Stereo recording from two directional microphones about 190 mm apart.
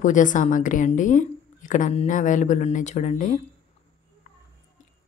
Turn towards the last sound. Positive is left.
turn(degrees=40)  # may be behind; listen again after turning